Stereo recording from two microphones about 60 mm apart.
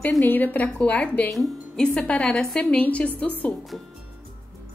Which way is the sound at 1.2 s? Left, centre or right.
Centre.